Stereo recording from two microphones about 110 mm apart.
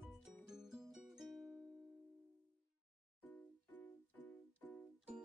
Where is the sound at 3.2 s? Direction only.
15° left (ahead or behind).